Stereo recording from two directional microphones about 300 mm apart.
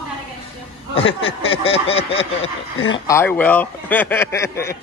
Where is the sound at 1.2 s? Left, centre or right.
Centre.